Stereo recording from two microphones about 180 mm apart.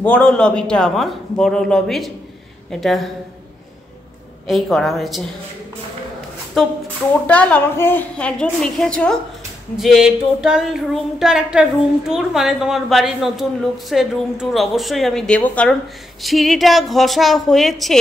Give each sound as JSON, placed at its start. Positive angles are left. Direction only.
{"t": 0.0, "sound": "a woman's voice", "side_deg": 5}
{"t": 4.5, "sound": "a woman's voice", "side_deg": 0}
{"t": 6.6, "sound": "a woman's voice", "side_deg": 0}